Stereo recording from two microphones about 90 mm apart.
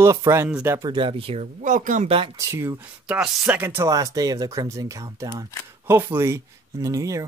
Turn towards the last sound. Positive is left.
turn(degrees=-40)  # may be behind; listen again after turning